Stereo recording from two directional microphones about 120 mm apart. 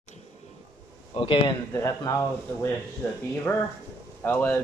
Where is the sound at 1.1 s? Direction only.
50° left (ahead or behind).